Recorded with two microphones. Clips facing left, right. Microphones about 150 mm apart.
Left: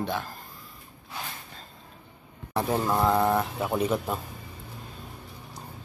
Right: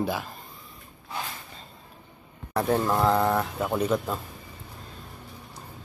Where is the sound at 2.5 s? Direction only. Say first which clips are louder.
Right 2 dB; 10° left (ahead or behind).